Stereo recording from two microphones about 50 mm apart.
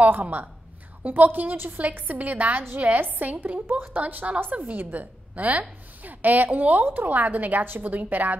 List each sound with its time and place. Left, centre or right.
0.0 s a woman's voice: right
4.0 s a woman's voice: right